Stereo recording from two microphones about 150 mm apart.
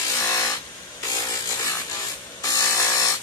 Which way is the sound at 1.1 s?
25° left (ahead or behind).